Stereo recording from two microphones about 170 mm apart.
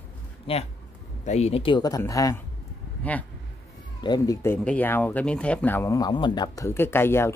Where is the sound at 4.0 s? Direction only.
20° left (ahead or behind).